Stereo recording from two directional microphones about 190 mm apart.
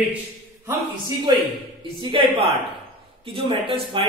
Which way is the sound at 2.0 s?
25° right (ahead or behind).